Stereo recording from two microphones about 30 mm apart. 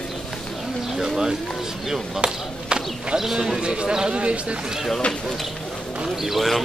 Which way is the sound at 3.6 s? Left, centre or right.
Right.